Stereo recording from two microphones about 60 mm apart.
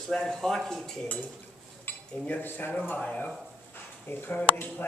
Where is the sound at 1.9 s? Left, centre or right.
Left.